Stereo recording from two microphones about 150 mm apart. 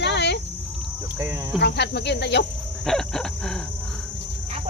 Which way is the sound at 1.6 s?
90° left.